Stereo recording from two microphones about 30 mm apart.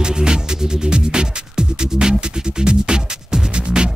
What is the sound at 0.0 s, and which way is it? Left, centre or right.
Music, right.